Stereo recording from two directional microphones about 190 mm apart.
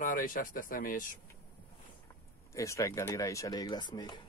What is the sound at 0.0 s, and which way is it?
Speech, 45° left (ahead or behind).